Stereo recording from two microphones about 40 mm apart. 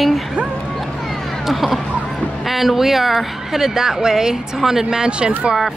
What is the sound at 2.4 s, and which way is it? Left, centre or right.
Speech, centre.